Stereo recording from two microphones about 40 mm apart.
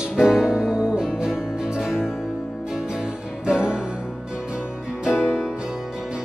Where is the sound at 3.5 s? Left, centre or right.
Right.